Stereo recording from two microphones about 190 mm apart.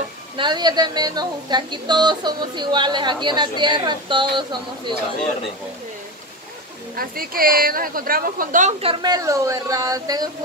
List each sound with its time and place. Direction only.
0.4 s speech: 25° right (ahead or behind)
7.0 s a woman's voice: 50° right (ahead or behind)
8.8 s speech: 20° right (ahead or behind)